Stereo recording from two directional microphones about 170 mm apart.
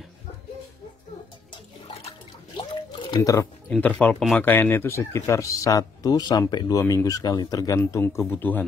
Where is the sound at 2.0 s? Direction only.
30° left (ahead or behind).